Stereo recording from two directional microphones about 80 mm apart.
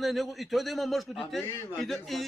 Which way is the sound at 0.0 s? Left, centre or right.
Centre.